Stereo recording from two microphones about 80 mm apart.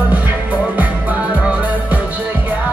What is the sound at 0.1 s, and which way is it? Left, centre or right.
Music, centre.